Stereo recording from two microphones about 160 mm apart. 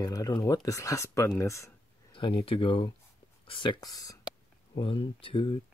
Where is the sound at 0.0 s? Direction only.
25° left (ahead or behind).